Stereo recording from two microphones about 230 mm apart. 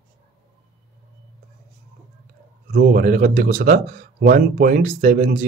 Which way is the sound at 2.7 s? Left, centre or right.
Right.